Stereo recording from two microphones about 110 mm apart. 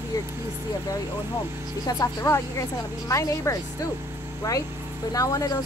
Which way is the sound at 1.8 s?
30° left (ahead or behind).